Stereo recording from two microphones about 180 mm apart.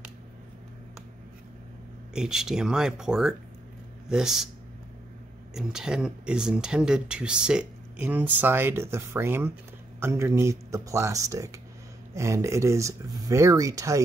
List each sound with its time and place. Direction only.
2.1 s speech: 5° right (ahead or behind)
5.5 s speech: 5° right (ahead or behind); by 14.0 s 20° right (ahead or behind)